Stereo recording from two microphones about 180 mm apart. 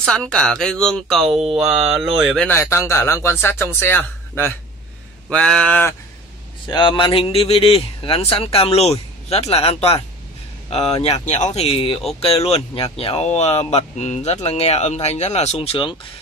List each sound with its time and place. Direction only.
0.0 s speech: 5° left (ahead or behind)
6.7 s speech: 25° left (ahead or behind)